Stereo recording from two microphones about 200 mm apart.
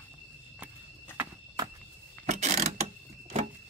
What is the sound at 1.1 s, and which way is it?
Walk, 20° right (ahead or behind).